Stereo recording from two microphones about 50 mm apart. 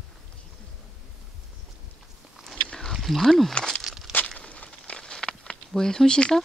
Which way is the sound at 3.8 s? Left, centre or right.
Centre.